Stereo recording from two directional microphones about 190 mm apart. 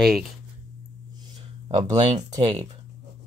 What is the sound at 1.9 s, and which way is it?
Speech, 20° right (ahead or behind).